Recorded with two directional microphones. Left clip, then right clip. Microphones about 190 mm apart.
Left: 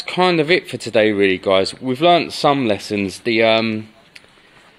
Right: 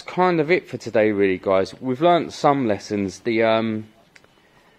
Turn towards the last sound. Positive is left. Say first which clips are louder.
# left 4 dB
turn(degrees=0)  # may be behind; listen again after turning